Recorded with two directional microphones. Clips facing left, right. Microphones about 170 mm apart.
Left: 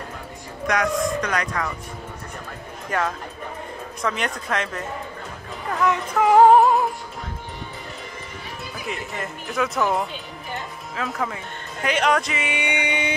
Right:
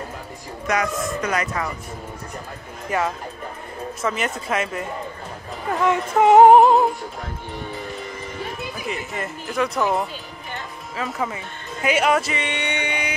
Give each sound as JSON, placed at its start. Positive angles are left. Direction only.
{"t": 0.7, "sound": "speech", "side_deg": -5}
{"t": 2.9, "sound": "speech", "side_deg": -5}
{"t": 5.7, "sound": "music", "side_deg": -25}
{"t": 8.8, "sound": "speech", "side_deg": 0}